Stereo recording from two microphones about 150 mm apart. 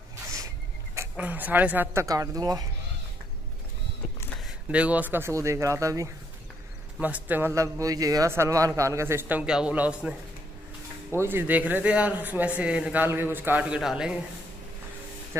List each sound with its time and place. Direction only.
0.9 s a man's voice: 10° right (ahead or behind)
4.6 s speech: 10° right (ahead or behind)
7.0 s a man's voice: 10° right (ahead or behind)